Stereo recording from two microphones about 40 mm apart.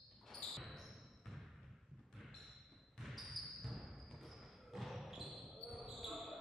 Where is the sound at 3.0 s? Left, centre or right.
Centre.